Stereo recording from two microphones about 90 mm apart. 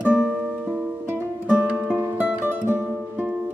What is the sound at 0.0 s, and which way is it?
Music, 10° right (ahead or behind).